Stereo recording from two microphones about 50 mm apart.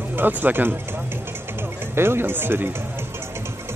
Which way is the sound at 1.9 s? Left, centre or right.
Right.